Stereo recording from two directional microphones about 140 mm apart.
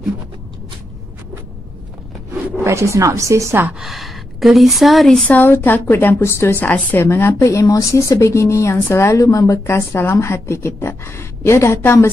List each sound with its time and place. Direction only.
2.6 s a woman's voice: 20° right (ahead or behind)
3.8 s a woman's voice: centre (ahead or behind); by 12.1 s 20° left (ahead or behind)